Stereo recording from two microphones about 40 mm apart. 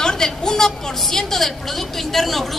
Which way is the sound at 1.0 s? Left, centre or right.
Centre.